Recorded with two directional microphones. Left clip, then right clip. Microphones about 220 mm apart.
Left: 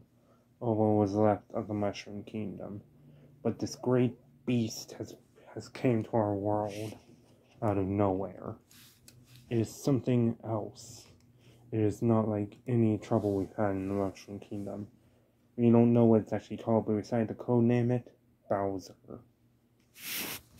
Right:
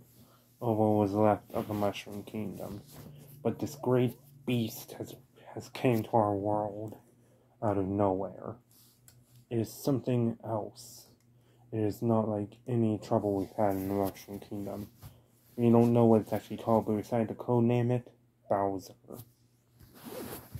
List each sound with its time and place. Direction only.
0.6 s speech: 5° right (ahead or behind)